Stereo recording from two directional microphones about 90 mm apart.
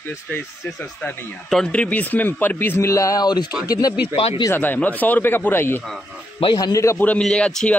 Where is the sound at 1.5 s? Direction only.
10° left (ahead or behind); by 3.9 s 45° left (ahead or behind).